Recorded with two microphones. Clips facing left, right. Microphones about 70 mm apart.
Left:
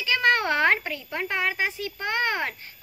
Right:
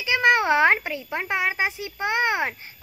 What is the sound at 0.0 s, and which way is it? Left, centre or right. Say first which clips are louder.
A child's voice: right 3 dB; centre.